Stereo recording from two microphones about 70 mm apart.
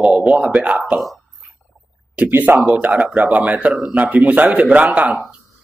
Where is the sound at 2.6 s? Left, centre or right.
Centre.